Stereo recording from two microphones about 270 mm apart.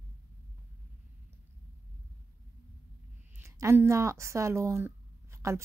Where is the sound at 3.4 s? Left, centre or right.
Centre.